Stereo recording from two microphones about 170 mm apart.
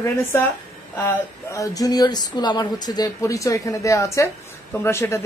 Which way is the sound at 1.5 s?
20° left (ahead or behind).